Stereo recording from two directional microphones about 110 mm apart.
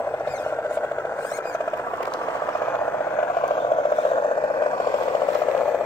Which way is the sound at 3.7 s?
45° left (ahead or behind).